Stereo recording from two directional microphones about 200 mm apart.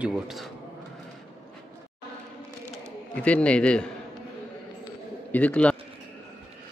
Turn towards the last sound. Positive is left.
turn(degrees=5)  # may be behind; listen again after turning